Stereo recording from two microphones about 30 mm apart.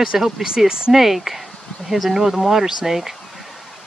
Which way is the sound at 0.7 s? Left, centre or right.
Right.